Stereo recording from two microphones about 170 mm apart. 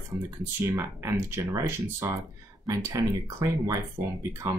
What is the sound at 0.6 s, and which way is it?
Speech, 15° right (ahead or behind).